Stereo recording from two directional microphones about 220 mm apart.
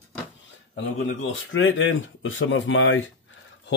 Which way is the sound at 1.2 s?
60° left (ahead or behind).